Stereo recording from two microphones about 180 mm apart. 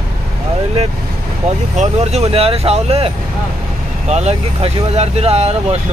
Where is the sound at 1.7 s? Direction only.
40° right (ahead or behind).